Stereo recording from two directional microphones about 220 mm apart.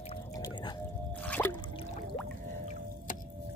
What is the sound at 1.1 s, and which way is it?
Drip, 5° left (ahead or behind).